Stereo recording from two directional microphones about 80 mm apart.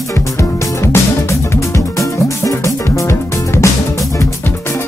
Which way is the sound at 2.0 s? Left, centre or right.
Left.